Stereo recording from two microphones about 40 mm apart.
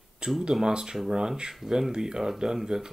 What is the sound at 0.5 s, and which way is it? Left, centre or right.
Speech, centre.